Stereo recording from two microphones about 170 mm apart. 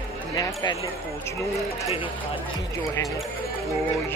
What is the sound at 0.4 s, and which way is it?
Speech, 20° left (ahead or behind).